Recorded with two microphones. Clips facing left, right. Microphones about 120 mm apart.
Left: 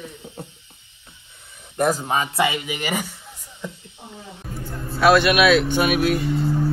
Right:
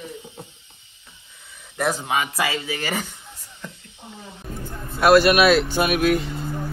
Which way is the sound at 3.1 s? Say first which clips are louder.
Left 2 dB; 10° left (ahead or behind).